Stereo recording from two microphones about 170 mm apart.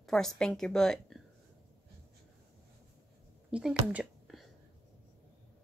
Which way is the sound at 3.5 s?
5° right (ahead or behind).